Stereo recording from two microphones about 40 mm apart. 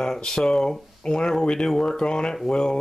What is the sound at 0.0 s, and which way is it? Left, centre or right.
Speech, centre.